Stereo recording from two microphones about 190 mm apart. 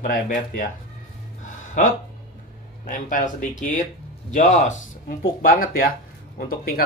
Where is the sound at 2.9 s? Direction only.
45° left (ahead or behind).